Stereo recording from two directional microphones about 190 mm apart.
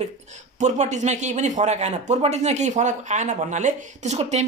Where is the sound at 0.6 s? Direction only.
40° right (ahead or behind).